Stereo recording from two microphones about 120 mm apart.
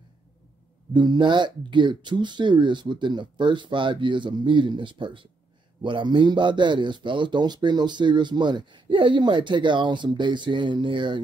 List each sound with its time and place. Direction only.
0.9 s a man's voice: 35° right (ahead or behind)